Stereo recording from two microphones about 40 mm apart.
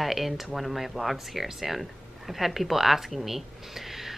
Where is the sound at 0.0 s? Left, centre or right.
Centre.